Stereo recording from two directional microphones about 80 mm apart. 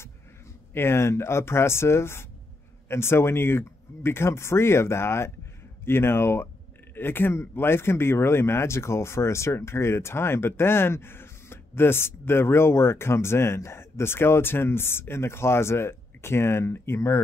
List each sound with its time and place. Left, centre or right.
0.7 s speech: left